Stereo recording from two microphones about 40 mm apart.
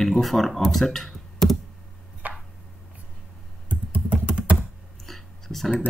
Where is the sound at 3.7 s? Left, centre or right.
Right.